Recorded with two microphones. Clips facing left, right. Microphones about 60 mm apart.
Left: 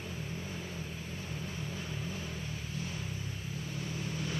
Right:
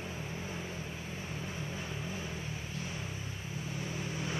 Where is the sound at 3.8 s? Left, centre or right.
Centre.